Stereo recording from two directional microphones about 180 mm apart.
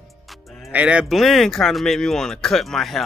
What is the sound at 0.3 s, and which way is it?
Speech, 5° right (ahead or behind).